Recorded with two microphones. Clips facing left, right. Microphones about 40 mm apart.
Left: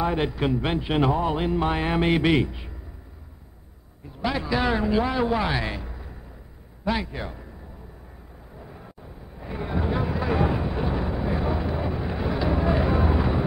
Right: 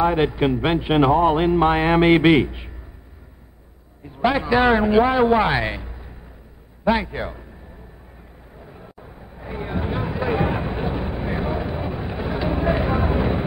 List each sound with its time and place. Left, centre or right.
0.0 s speech: right
4.2 s a man's voice: right
8.5 s vehicle: centre